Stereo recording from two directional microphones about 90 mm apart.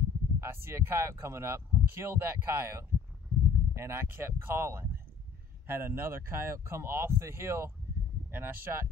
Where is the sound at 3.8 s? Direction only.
25° right (ahead or behind).